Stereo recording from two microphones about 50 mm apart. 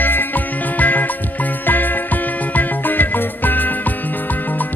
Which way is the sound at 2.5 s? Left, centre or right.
Left.